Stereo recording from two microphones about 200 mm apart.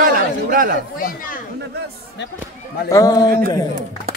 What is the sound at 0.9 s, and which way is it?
Speech, 45° left (ahead or behind).